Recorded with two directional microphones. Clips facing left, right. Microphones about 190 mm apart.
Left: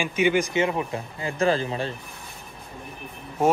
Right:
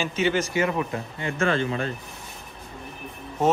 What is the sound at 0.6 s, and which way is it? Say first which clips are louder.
Speech: even; 25° left (ahead or behind).